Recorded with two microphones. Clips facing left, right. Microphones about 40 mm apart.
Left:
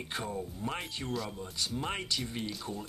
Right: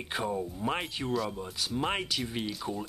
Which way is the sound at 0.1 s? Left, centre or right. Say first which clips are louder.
Right 6 dB; centre.